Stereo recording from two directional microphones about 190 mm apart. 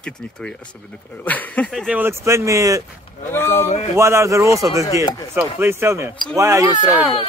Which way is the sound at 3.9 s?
15° right (ahead or behind).